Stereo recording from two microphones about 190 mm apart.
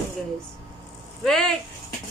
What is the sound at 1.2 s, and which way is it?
Speech, centre (ahead or behind).